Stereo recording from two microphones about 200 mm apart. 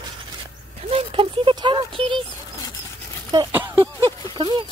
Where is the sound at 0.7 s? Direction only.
30° right (ahead or behind).